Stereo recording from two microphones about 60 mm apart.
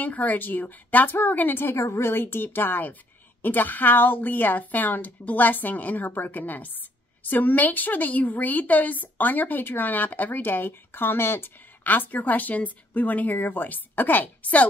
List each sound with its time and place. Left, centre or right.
0.0 s a woman's voice: left